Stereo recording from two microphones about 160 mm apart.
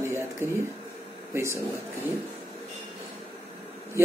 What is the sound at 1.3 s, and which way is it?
Speech, 15° right (ahead or behind).